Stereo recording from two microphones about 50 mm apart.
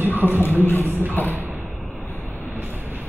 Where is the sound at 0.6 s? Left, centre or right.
Left.